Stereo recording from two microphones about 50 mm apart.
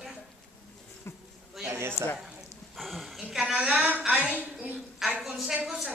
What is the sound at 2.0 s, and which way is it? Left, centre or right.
Speech, left.